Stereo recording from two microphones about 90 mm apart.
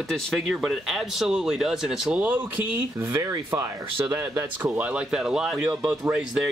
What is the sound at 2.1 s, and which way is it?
Speech, 20° right (ahead or behind).